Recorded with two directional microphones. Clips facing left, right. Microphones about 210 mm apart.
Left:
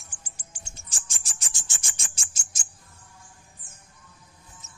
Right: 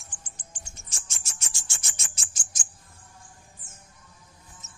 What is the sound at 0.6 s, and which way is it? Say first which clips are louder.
Music: left 3 dB; 30° left (ahead or behind).